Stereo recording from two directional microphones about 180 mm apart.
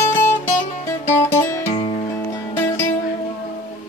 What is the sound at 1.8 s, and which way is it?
Music, 30° left (ahead or behind).